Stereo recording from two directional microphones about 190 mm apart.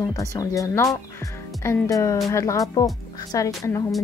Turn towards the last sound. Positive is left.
turn(degrees=15)  # may be behind; listen again after turning